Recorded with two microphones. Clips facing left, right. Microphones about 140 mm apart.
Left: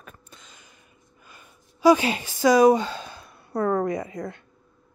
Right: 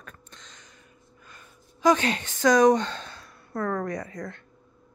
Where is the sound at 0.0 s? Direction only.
5° left (ahead or behind).